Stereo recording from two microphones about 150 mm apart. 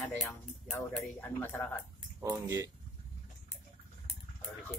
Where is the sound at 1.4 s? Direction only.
15° left (ahead or behind).